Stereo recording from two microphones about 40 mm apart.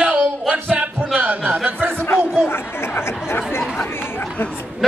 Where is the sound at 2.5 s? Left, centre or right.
Left.